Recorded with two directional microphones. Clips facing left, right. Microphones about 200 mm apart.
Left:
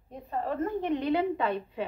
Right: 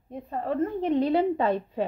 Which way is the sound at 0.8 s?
35° right (ahead or behind).